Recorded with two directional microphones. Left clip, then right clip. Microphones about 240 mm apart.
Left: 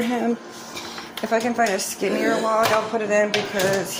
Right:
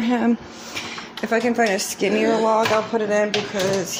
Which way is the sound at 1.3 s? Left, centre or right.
Right.